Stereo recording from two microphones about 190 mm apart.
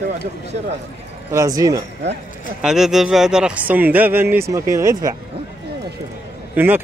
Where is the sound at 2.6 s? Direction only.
Centre (ahead or behind).